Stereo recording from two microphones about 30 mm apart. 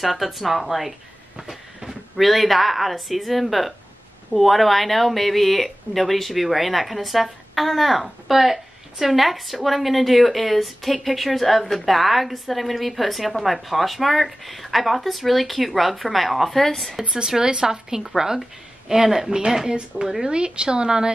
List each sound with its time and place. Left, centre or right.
0.0 s a woman's voice: centre
17.4 s a woman's voice: right
20.2 s speech: right